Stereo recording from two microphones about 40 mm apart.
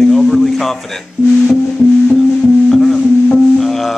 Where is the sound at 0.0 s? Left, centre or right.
Centre.